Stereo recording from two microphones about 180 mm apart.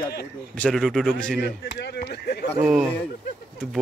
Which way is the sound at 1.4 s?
70° left (ahead or behind).